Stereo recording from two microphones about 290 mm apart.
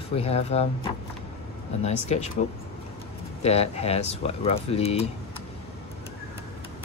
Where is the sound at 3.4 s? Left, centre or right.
Left.